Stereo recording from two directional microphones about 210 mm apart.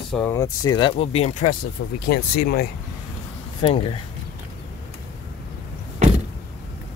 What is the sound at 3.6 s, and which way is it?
Speech, 25° left (ahead or behind).